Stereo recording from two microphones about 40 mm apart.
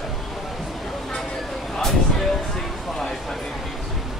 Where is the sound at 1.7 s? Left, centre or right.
Centre.